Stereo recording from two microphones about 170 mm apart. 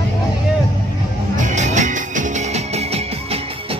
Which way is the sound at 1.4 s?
45° right (ahead or behind).